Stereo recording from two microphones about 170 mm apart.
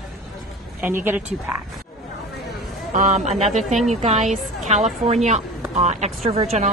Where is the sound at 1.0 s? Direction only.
10° right (ahead or behind).